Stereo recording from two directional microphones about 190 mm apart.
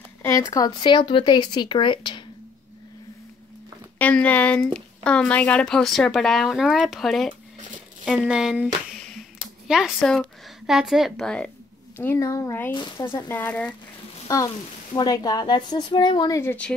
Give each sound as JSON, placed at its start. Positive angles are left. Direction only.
{"t": 0.2, "sound": "speech", "side_deg": 15}
{"t": 4.0, "sound": "a woman's voice", "side_deg": 10}
{"t": 14.2, "sound": "speech", "side_deg": 20}